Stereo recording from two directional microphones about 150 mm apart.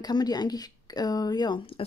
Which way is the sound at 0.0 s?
25° left (ahead or behind).